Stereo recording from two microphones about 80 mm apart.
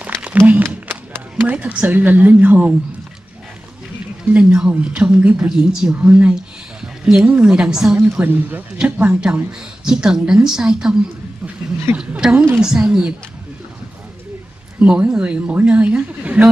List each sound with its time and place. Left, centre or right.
0.5 s a sound: right
1.4 s speech: centre
4.2 s a woman's voice: centre
8.1 s speech: right
12.0 s a woman's voice: centre
14.8 s speech: centre